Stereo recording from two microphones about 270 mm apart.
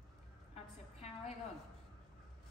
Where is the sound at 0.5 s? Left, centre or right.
Left.